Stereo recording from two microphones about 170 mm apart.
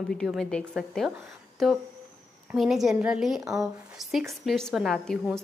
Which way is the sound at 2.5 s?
Centre (ahead or behind).